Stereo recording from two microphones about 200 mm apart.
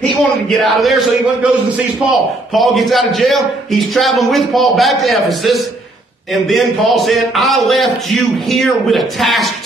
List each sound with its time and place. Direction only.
0.5 s a man's voice: centre (ahead or behind)